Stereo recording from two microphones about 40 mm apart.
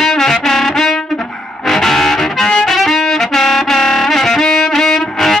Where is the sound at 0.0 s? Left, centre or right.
Centre.